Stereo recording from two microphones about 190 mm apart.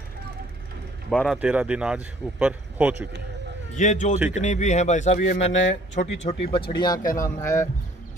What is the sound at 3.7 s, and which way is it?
A man's voice, 40° left (ahead or behind).